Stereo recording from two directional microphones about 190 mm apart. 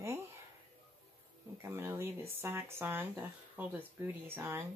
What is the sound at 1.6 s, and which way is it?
Speech, 15° right (ahead or behind).